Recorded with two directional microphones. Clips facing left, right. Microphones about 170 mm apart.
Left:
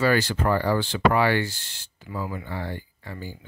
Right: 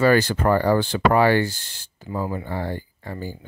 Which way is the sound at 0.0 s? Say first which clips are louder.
Right 4 dB; 50° right (ahead or behind).